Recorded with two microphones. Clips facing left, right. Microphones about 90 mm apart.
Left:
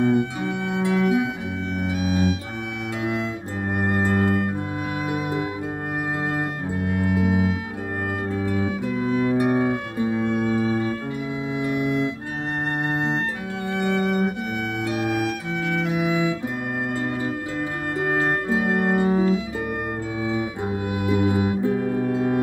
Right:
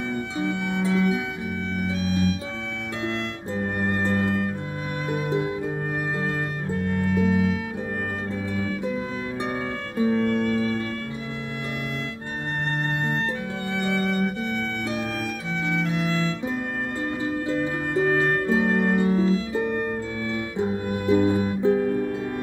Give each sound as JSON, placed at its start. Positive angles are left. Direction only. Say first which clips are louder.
{"t": 0.0, "sound": "music", "louder": "left 6 dB", "side_deg": 15}
{"t": 3.6, "sound": "music", "louder": "left 3 dB", "side_deg": 10}
{"t": 14.9, "sound": "violin", "louder": "left 5 dB", "side_deg": 15}
{"t": 17.6, "sound": "music", "louder": "right 3 dB", "side_deg": 15}